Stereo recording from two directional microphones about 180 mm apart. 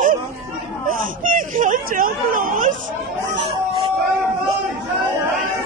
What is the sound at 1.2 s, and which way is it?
Speech, 50° right (ahead or behind).